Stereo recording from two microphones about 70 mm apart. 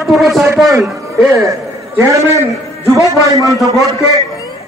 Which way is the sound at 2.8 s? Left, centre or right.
Left.